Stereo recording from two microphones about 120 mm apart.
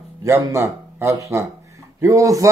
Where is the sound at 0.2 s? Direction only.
25° right (ahead or behind).